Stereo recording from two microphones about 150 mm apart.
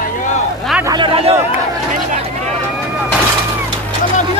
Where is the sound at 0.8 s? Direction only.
25° right (ahead or behind).